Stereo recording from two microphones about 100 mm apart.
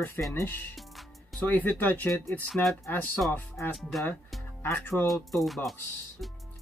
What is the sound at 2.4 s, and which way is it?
Speech, 5° left (ahead or behind).